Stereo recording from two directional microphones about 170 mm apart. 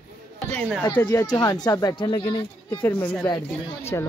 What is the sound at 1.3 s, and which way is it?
Speech, 25° left (ahead or behind).